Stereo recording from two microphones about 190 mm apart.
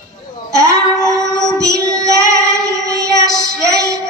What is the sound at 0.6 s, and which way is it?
Child singing, 15° right (ahead or behind).